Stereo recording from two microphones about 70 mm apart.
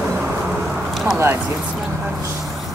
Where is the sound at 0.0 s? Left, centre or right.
Centre.